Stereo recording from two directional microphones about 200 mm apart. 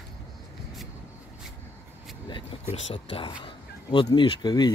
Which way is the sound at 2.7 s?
30° left (ahead or behind).